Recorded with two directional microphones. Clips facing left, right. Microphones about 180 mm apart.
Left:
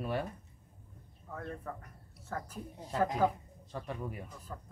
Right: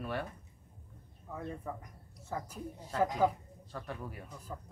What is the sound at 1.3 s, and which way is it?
A man's voice, 10° right (ahead or behind).